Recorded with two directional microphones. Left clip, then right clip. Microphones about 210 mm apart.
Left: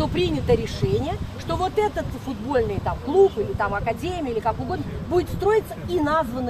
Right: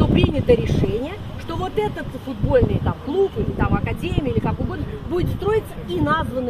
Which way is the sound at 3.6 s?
20° left (ahead or behind).